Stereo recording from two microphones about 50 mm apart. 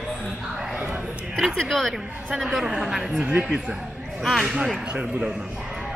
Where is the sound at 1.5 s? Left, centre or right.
Centre.